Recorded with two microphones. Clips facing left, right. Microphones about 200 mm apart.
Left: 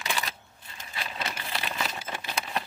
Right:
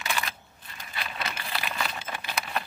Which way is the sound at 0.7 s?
25° left (ahead or behind).